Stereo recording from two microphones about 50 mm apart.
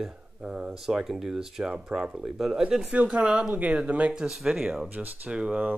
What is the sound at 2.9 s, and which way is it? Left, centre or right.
Speech, right.